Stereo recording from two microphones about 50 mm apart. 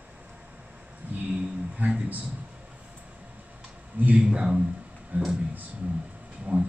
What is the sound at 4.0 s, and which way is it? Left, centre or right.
Speech, right.